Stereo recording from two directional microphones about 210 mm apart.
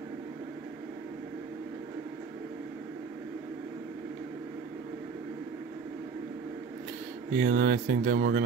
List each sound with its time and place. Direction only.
7.3 s speech: 50° right (ahead or behind)